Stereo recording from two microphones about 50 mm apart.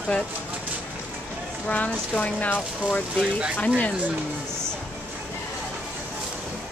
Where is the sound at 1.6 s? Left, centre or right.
Left.